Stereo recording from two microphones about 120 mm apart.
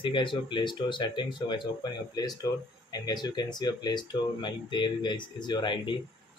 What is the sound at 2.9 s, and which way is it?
Speech, 35° left (ahead or behind).